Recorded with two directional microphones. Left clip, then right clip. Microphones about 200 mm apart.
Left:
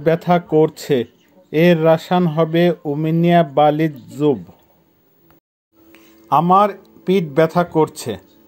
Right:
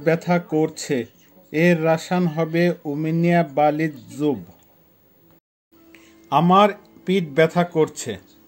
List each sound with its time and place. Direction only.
0.0 s speech: 15° left (ahead or behind)
5.9 s speech: 20° left (ahead or behind)